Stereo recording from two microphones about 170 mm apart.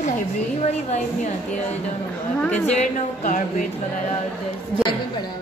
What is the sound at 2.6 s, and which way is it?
Speech, 45° left (ahead or behind).